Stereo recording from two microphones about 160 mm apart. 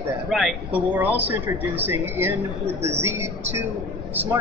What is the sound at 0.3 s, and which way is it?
Speech, centre (ahead or behind).